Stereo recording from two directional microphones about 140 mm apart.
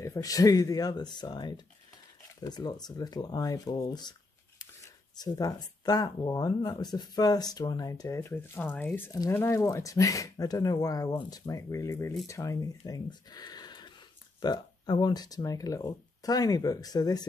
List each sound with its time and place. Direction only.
0.0 s speech: 25° left (ahead or behind)